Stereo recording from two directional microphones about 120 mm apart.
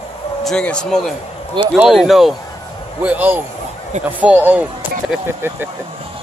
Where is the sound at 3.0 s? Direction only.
15° right (ahead or behind).